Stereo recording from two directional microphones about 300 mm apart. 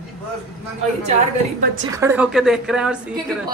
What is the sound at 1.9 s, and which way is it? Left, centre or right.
A woman's voice, centre.